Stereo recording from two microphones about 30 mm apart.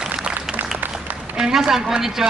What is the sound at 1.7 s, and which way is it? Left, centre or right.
Speech, centre.